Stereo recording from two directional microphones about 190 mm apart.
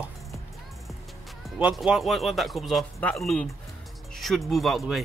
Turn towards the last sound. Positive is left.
turn(degrees=0)  # may be behind; listen again after turning